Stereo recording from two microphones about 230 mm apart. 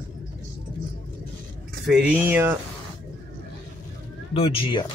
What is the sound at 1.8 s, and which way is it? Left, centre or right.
Speech, centre.